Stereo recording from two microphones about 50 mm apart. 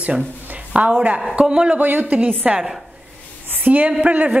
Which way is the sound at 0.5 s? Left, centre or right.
Right.